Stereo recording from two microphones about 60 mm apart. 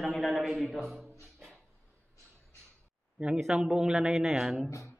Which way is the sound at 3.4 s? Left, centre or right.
Centre.